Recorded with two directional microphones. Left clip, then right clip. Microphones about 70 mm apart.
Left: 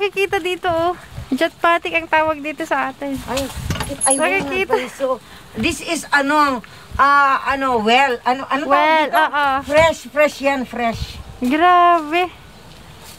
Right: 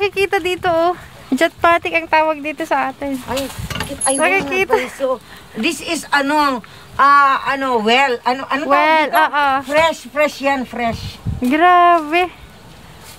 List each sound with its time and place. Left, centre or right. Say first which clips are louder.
0.0 s speech: right 2 dB; centre
3.3 s speech: right 1 dB; centre
4.2 s speech: right 5 dB; right
4.9 s speech: right 1 dB; centre; by 9.7 s right
9.7 s speech: left 1 dB; centre
11.5 s speech: right 2 dB; centre